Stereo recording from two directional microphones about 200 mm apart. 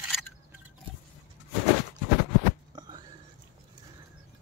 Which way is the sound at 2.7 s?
20° right (ahead or behind).